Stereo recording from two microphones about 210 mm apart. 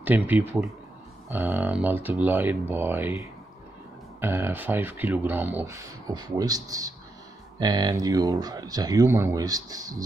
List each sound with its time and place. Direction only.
0.0 s speech: 10° right (ahead or behind)